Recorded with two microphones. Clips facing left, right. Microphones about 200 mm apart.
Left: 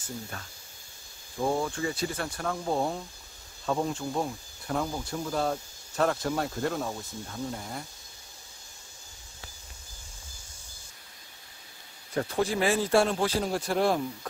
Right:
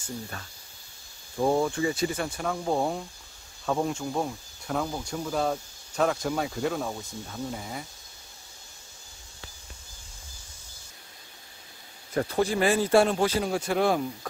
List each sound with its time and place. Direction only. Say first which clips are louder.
1.6 s speech: right 4 dB; 20° right (ahead or behind)
2.1 s speech: right 2 dB; 5° right (ahead or behind)
12.2 s speech: right 2 dB; centre (ahead or behind)